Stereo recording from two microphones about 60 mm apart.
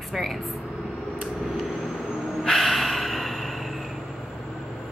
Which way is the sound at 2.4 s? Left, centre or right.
Centre.